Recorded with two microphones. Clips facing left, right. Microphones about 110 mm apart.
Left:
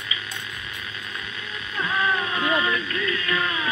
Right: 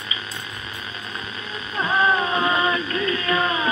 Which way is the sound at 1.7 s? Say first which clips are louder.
Right 4 dB; 30° right (ahead or behind).